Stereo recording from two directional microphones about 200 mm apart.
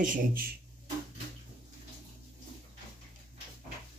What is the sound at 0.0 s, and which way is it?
Speech, 40° right (ahead or behind).